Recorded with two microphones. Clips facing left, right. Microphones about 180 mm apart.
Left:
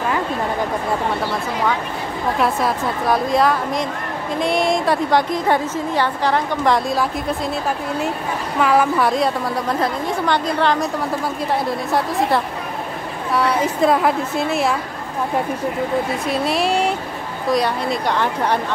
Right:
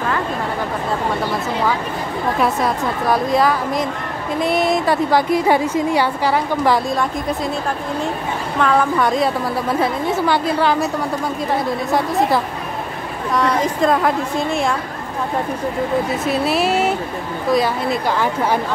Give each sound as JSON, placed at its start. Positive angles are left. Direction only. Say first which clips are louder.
{"t": 2.4, "sound": "a woman's voice", "louder": "even", "side_deg": 0}
{"t": 8.5, "sound": "a woman's voice", "louder": "even", "side_deg": 5}
{"t": 16.3, "sound": "a woman's voice", "louder": "right 2 dB", "side_deg": 0}